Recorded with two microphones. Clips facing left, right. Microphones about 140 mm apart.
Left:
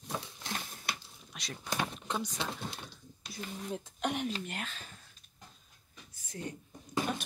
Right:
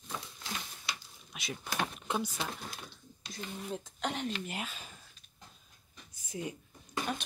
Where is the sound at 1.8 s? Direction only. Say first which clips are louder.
Right 3 dB; 5° right (ahead or behind).